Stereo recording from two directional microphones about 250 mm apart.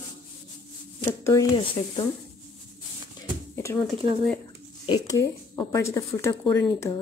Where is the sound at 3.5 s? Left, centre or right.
Centre.